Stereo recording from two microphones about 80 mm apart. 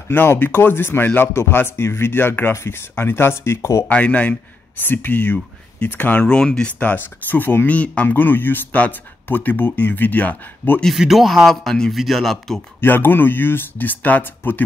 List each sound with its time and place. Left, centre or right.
0.1 s speech: left
3.9 s speech: centre
6.2 s speech: centre
6.8 s speech: left
11.0 s a man's voice: centre
12.8 s speech: left